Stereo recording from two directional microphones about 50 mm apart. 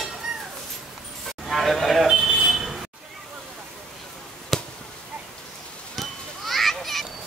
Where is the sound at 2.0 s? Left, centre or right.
Centre.